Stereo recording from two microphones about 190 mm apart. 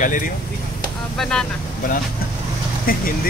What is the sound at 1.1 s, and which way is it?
Speech, 5° left (ahead or behind).